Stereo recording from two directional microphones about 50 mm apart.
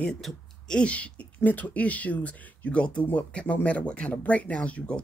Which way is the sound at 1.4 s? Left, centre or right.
Left.